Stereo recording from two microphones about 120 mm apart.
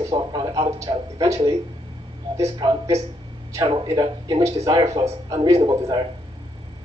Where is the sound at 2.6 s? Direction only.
40° right (ahead or behind).